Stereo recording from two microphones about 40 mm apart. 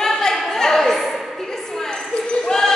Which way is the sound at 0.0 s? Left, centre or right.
Centre.